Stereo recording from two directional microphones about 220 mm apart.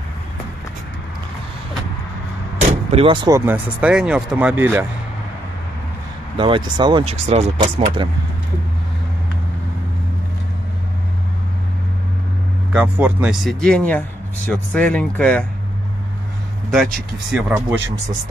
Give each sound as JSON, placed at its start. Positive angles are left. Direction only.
{"t": 2.9, "sound": "speech", "side_deg": -25}
{"t": 6.3, "sound": "speech", "side_deg": -20}
{"t": 12.7, "sound": "speech", "side_deg": -5}
{"t": 16.7, "sound": "speech", "side_deg": 0}